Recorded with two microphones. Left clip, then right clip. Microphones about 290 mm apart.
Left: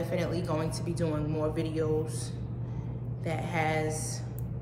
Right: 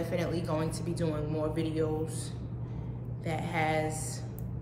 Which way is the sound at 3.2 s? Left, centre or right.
Centre.